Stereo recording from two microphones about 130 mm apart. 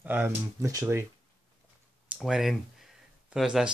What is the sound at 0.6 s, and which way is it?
Speech, 25° right (ahead or behind).